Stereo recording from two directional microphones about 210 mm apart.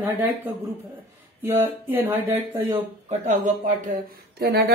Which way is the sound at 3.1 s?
35° right (ahead or behind).